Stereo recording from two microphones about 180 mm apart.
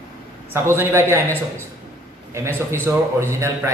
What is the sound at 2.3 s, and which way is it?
A man's voice, 15° right (ahead or behind).